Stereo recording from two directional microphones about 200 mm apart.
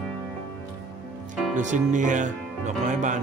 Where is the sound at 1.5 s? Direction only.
40° right (ahead or behind).